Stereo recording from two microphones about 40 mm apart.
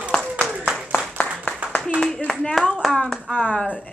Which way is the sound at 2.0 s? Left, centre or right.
Centre.